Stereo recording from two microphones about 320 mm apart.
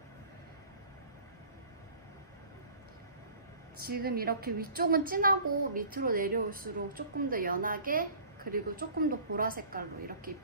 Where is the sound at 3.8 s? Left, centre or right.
Right.